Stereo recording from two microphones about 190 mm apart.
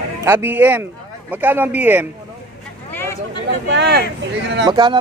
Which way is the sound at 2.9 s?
15° left (ahead or behind).